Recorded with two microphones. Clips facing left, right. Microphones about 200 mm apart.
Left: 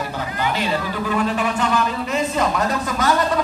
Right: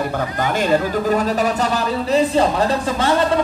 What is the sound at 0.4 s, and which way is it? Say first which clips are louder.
A woman's voice: right 5 dB; 45° right (ahead or behind).